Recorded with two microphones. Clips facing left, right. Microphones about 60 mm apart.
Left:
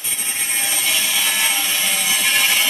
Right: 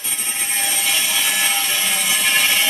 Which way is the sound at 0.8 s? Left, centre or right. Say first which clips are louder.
Even; centre.